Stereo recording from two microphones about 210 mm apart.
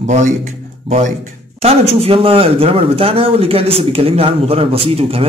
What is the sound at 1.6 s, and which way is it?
Speech, 30° right (ahead or behind).